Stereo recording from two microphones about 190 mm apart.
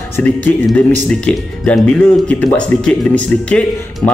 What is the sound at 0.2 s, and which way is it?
Speech, 5° left (ahead or behind).